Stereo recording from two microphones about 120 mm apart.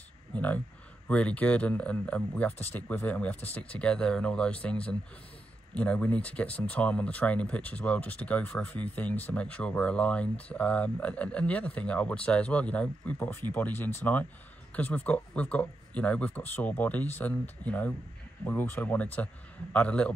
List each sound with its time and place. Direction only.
0.3 s speech: 15° left (ahead or behind)